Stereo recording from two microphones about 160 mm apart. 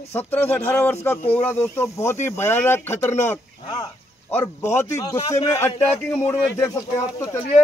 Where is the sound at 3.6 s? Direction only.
25° left (ahead or behind).